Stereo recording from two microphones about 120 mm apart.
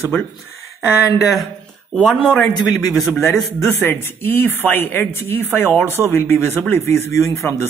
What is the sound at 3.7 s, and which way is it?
Speech, 20° left (ahead or behind).